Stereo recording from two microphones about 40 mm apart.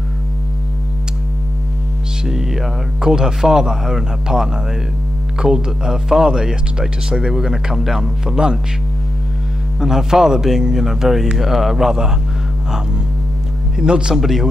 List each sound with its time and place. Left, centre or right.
2.2 s speech: centre
9.8 s speech: centre
13.7 s speech: right
14.1 s a man's voice: centre